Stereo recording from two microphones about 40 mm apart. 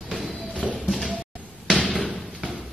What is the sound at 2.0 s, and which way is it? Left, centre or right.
Thump, right.